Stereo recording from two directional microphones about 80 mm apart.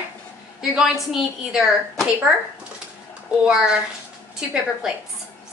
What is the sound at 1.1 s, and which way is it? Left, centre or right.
A woman's voice, centre.